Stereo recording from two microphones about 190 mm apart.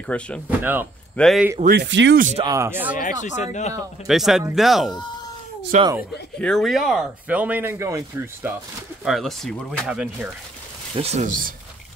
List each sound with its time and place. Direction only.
0.0 s speech: 5° left (ahead or behind)
0.5 s speech: 10° right (ahead or behind)
1.1 s speech: centre (ahead or behind)
1.6 s speech: 60° right (ahead or behind)
2.3 s speech: 20° right (ahead or behind)
3.0 s speech: 40° left (ahead or behind)
4.1 s speech: centre (ahead or behind)
5.7 s speech: 40° right (ahead or behind)
6.4 s speech: centre (ahead or behind)
9.0 s speech: centre (ahead or behind)
11.0 s speech: 40° right (ahead or behind)